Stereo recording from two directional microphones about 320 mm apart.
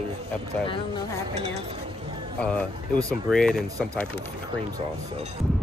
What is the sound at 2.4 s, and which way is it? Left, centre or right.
Speech, centre.